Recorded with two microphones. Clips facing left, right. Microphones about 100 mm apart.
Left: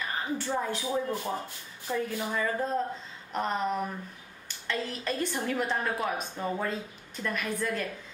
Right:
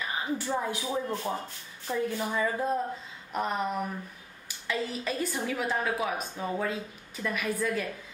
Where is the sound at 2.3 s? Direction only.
10° right (ahead or behind).